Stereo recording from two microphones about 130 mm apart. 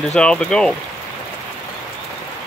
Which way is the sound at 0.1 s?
5° left (ahead or behind).